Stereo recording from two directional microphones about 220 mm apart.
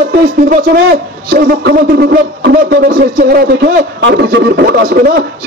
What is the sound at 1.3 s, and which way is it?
A man's voice, 50° right (ahead or behind).